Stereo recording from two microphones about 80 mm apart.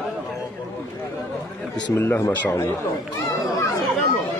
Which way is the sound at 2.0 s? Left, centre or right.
Left.